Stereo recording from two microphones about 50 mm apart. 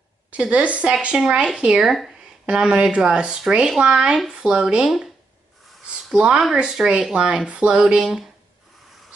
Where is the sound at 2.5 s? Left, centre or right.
Centre.